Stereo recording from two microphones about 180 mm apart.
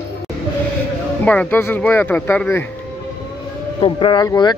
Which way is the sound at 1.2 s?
10° left (ahead or behind).